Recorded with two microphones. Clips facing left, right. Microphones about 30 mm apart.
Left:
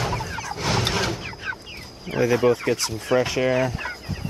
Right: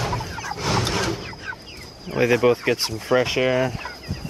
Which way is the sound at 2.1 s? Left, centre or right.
Centre.